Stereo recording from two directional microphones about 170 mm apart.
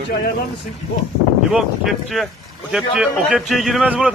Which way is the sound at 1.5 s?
Centre (ahead or behind).